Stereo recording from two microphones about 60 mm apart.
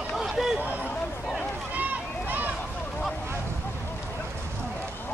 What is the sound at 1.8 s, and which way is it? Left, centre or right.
Run, right.